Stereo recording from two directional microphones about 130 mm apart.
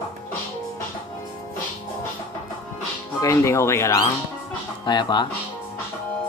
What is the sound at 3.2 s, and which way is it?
Speech, 25° left (ahead or behind).